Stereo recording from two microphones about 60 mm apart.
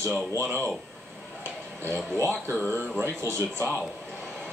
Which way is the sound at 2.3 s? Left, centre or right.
Left.